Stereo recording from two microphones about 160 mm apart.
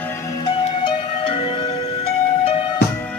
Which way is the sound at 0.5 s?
30° left (ahead or behind).